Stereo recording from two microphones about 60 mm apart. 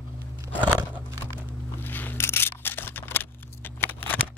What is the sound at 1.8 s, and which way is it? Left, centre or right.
Camera, left.